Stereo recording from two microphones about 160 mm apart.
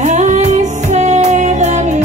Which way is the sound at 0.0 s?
45° right (ahead or behind).